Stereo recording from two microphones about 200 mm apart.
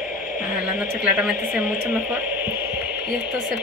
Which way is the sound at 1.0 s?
5° right (ahead or behind).